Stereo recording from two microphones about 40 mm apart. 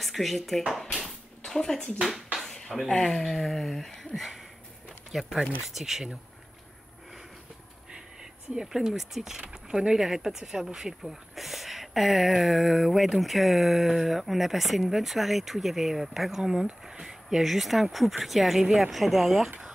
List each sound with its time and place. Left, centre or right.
0.0 s speech: centre
0.7 s dishes: centre
1.4 s speech: centre
2.4 s a sound: centre
2.9 s speech: left
3.2 s speech: centre
7.9 s speech: centre